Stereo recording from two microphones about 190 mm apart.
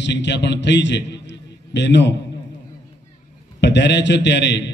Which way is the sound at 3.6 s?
65° left (ahead or behind).